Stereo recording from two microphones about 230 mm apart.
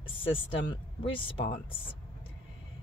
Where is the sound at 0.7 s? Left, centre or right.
Left.